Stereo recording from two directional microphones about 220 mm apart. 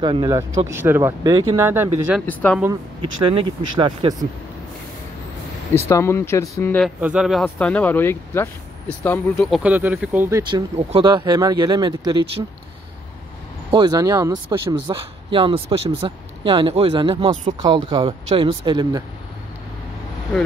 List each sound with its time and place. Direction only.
0.0 s speech: 20° right (ahead or behind)
2.2 s speech: 5° left (ahead or behind)
3.2 s speech: 20° right (ahead or behind)
5.8 s speech: 10° left (ahead or behind)
7.0 s speech: 5° right (ahead or behind)
10.5 s speech: 20° right (ahead or behind)
13.7 s speech: 20° right (ahead or behind)